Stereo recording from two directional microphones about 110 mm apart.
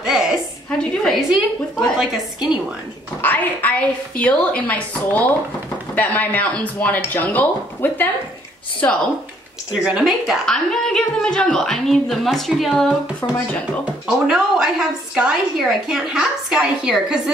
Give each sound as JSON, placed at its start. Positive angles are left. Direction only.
{"t": 0.0, "sound": "a sound", "side_deg": -5}
{"t": 0.7, "sound": "a woman's voice", "side_deg": 5}
{"t": 3.2, "sound": "speech", "side_deg": 15}
{"t": 9.7, "sound": "a woman's voice", "side_deg": -5}
{"t": 13.2, "sound": "speech", "side_deg": 35}
{"t": 13.8, "sound": "a woman's voice", "side_deg": -10}